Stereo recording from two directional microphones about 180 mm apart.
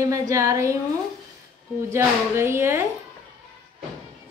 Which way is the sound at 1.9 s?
15° right (ahead or behind).